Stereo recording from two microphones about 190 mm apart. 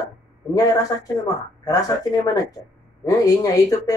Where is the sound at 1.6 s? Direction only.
20° left (ahead or behind).